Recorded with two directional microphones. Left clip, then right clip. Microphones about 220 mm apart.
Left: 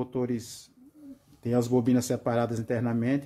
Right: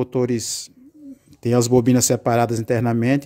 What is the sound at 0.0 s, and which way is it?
Speech, 45° right (ahead or behind).